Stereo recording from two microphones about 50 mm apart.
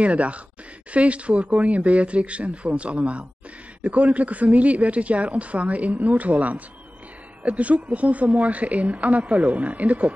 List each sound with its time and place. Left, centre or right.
0.0 s speech: right